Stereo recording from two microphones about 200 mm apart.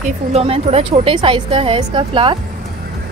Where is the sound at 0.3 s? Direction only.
30° right (ahead or behind).